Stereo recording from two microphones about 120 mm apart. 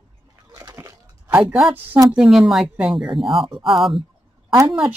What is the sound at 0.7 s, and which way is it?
Crunch, 25° right (ahead or behind).